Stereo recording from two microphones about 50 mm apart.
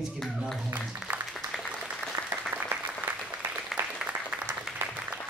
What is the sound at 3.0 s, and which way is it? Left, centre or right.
Applause, right.